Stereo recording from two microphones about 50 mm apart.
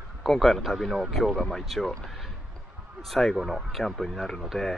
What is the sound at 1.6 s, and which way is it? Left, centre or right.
Speech, centre.